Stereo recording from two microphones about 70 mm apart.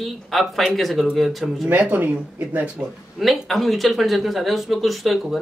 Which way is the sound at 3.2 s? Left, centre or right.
Centre.